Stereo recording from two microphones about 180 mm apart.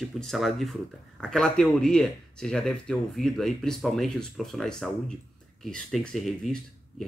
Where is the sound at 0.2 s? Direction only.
Centre (ahead or behind).